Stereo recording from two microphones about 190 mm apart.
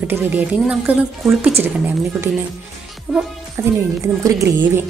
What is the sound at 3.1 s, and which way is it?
A woman's voice, 10° right (ahead or behind).